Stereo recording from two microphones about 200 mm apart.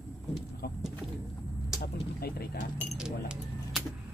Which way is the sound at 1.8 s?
50° left (ahead or behind).